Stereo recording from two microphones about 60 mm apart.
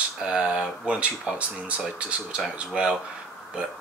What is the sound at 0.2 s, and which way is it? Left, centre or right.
Speech, centre.